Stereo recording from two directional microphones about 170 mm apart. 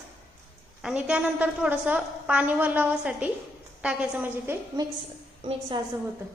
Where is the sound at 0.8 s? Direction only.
5° right (ahead or behind).